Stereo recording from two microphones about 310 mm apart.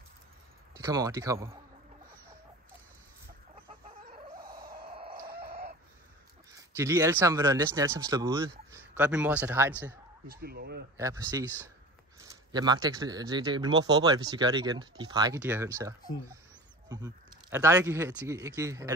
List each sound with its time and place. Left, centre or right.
0.7 s speech: centre
4.8 s chicken: centre
5.3 s chicken: right
6.5 s speech: centre
10.2 s speech: right
11.0 s speech: centre
16.9 s speech: centre